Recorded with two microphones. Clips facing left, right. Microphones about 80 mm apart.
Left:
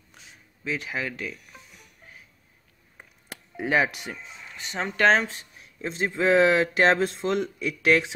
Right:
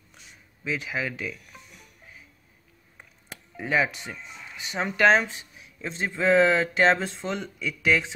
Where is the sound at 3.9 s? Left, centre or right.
Centre.